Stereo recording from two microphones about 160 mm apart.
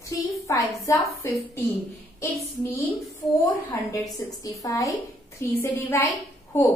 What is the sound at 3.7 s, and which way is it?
A woman's voice, 20° left (ahead or behind).